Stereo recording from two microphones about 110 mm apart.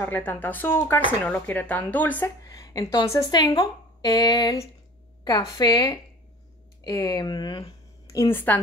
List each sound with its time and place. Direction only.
0.0 s speech: 15° left (ahead or behind)
2.4 s a woman's voice: 30° left (ahead or behind); by 7.7 s 45° left (ahead or behind)
8.3 s speech: 20° left (ahead or behind)